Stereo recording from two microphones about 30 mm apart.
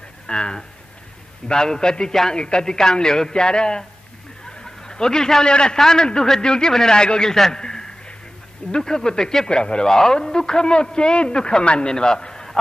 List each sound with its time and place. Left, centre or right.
0.3 s speech: left
4.6 s a sound: left
5.5 s speech: left
7.5 s a sound: left
8.7 s speech: left
9.5 s speech: left
9.8 s speech: centre
11.6 s speech: left
11.9 s a man's voice: left